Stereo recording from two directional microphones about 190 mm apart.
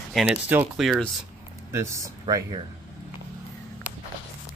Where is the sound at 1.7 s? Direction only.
15° right (ahead or behind).